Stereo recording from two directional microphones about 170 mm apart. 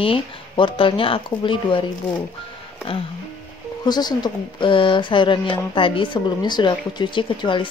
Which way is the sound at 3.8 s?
25° left (ahead or behind).